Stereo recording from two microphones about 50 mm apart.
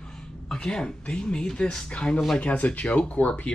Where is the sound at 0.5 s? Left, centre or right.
Centre.